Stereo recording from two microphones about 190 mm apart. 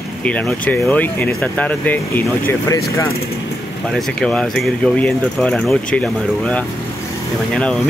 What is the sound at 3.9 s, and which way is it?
Speech, 5° left (ahead or behind).